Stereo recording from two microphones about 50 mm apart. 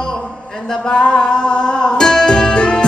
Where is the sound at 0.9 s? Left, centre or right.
Centre.